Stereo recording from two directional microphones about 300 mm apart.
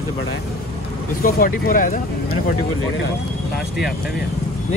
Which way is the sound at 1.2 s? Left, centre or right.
Left.